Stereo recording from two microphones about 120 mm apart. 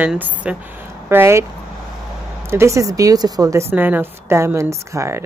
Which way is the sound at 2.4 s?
20° right (ahead or behind).